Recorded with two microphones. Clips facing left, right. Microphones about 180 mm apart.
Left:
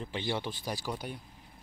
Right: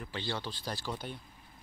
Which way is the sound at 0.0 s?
15° left (ahead or behind).